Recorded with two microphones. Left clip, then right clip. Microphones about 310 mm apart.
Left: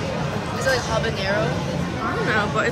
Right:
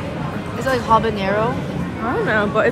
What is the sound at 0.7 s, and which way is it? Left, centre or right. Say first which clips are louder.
Speech: right 7 dB; centre.